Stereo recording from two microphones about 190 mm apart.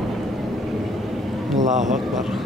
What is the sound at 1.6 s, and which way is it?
Vehicle, 40° right (ahead or behind).